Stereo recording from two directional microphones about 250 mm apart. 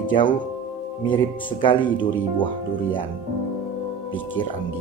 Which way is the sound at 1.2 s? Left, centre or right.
Centre.